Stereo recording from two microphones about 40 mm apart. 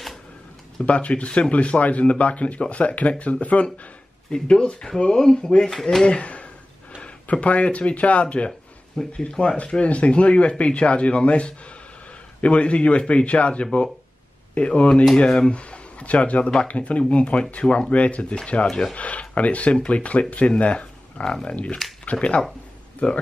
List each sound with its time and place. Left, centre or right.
0.8 s speech: left
4.3 s speech: left
6.0 s speech: left
21.2 s speech: left